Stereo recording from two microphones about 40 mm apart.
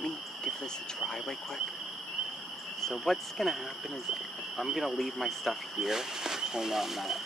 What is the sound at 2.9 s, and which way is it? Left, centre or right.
A man's voice, centre.